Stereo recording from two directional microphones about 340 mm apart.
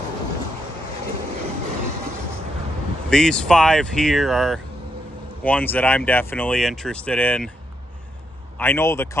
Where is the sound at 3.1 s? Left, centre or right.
Centre.